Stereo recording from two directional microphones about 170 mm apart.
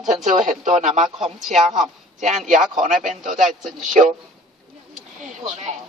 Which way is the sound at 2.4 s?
45° right (ahead or behind).